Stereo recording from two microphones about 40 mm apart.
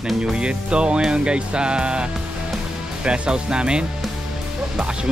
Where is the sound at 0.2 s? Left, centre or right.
Right.